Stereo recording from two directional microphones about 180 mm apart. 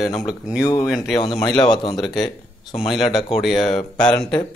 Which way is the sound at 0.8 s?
5° right (ahead or behind).